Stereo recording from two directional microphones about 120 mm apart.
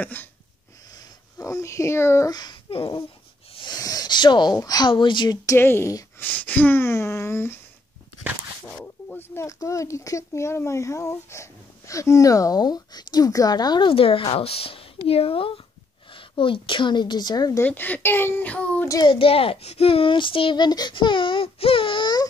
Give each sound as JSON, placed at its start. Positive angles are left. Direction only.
{"t": 0.0, "sound": "a child's voice", "side_deg": 15}
{"t": 1.4, "sound": "speech", "side_deg": 25}
{"t": 2.3, "sound": "speech", "side_deg": 35}
{"t": 3.5, "sound": "a sound", "side_deg": 35}
{"t": 4.6, "sound": "speech", "side_deg": 35}
{"t": 5.6, "sound": "speech", "side_deg": 20}
{"t": 8.6, "sound": "speech", "side_deg": 5}
{"t": 9.3, "sound": "speech", "side_deg": 25}
{"t": 17.6, "sound": "a child's voice", "side_deg": 15}
{"t": 19.0, "sound": "speech", "side_deg": 50}